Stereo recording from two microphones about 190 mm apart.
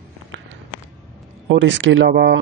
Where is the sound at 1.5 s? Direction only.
75° right (ahead or behind).